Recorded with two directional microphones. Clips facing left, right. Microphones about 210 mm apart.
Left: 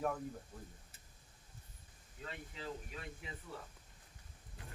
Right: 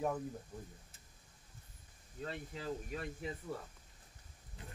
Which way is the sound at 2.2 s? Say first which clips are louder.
Right 4 dB; 40° right (ahead or behind).